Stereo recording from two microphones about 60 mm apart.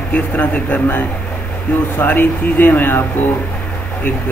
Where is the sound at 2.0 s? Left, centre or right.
Left.